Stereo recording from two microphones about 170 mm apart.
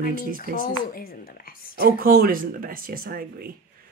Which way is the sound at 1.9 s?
55° right (ahead or behind).